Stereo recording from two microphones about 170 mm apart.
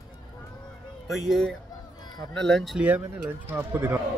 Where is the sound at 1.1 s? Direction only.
Centre (ahead or behind).